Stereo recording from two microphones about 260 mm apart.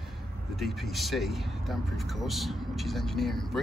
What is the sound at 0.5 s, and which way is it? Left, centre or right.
Speech, centre.